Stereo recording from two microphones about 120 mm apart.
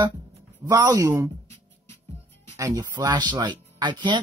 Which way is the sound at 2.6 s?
30° right (ahead or behind).